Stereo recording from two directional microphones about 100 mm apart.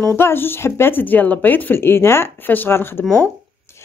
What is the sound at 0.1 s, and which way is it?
Speech, 25° left (ahead or behind).